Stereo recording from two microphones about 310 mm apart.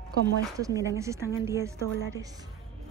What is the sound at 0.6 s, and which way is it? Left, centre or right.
A woman's voice, centre.